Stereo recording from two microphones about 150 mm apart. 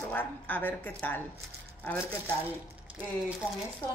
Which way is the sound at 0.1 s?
10° left (ahead or behind).